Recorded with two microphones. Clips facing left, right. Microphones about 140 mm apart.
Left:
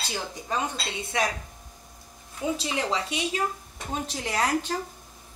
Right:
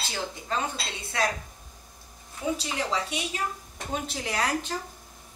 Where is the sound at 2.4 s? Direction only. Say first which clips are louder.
Left 1 dB; 20° left (ahead or behind).